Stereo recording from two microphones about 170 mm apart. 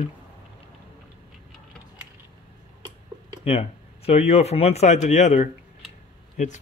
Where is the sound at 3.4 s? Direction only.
35° left (ahead or behind).